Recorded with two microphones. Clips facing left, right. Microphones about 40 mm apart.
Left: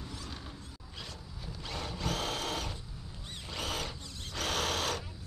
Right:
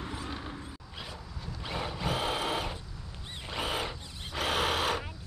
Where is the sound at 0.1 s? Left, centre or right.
Right.